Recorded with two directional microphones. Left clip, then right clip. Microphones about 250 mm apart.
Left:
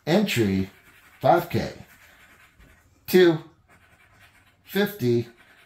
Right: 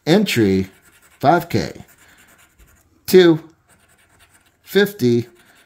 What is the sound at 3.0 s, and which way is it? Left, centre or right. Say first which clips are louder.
Speech: right 6 dB; right.